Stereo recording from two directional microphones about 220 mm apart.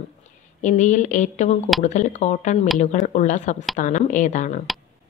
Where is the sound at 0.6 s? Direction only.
35° left (ahead or behind).